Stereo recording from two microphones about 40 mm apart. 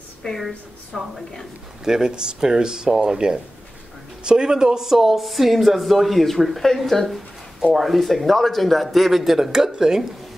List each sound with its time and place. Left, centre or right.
0.4 s speech: centre
1.9 s speech: centre